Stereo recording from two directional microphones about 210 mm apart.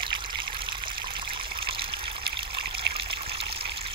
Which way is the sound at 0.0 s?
25° right (ahead or behind).